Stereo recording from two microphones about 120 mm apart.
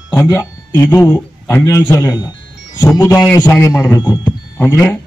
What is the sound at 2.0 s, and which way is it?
A man's voice, 35° left (ahead or behind).